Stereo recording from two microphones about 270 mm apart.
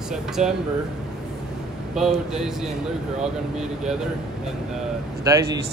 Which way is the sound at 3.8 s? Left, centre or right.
Centre.